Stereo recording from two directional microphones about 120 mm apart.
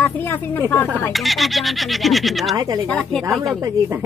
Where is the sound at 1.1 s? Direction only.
Centre (ahead or behind).